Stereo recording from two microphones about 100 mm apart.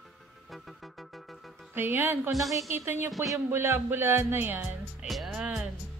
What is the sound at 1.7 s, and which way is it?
Music, 20° right (ahead or behind).